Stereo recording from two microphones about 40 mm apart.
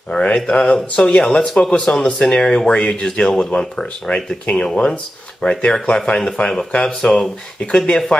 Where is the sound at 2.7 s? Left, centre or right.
Left.